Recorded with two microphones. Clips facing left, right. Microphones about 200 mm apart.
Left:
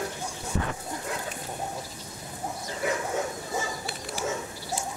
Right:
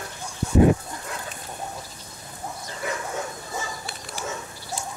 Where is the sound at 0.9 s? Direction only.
20° left (ahead or behind).